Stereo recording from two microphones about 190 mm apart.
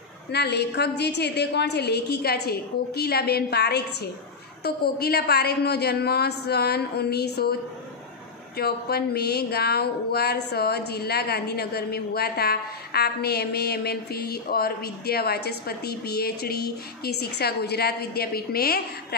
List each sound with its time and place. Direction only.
0.3 s speech: 60° left (ahead or behind)
8.5 s speech: 55° left (ahead or behind)